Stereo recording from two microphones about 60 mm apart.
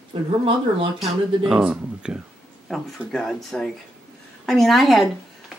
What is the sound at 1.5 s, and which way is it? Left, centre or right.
Speech, centre.